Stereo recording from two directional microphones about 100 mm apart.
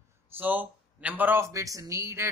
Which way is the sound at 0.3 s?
20° right (ahead or behind).